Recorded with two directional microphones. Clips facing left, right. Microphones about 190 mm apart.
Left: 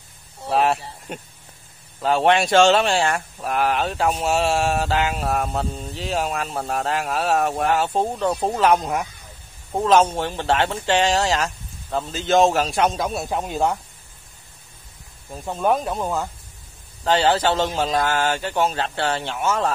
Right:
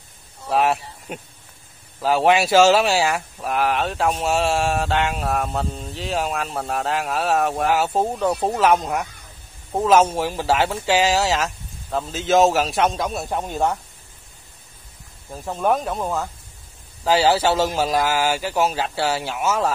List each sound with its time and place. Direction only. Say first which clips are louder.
0.5 s speech: even; centre (ahead or behind)
15.3 s a man's voice: even; centre (ahead or behind)